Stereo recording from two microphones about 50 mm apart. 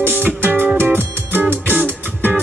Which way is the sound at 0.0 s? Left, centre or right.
Right.